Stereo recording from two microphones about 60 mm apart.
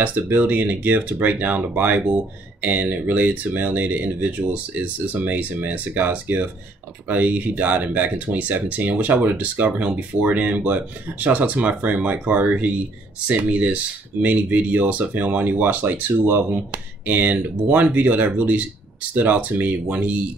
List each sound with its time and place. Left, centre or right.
0.0 s speech: right